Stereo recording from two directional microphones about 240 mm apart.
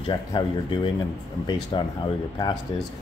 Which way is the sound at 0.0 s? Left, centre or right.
Left.